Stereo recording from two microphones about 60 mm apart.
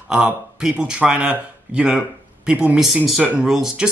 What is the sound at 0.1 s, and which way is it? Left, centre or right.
Speech, centre.